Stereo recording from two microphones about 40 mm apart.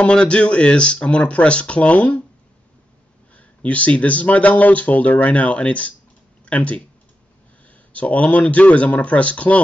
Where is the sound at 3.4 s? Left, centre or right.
Left.